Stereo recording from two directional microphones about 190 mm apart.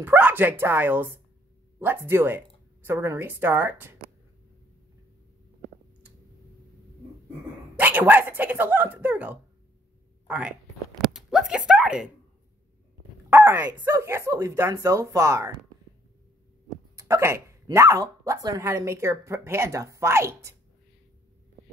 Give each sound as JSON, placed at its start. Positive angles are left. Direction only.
{"t": 0.0, "sound": "speech", "side_deg": -10}
{"t": 7.7, "sound": "speech", "side_deg": -10}
{"t": 13.3, "sound": "speech", "side_deg": -10}
{"t": 16.9, "sound": "speech", "side_deg": -15}